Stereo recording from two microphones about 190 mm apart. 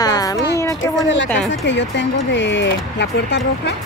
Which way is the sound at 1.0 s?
75° left (ahead or behind).